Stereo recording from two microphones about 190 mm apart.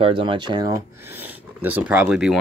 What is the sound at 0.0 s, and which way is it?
Speech, 25° right (ahead or behind).